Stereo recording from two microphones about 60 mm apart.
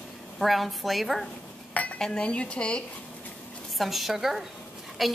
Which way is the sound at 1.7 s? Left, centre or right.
Left.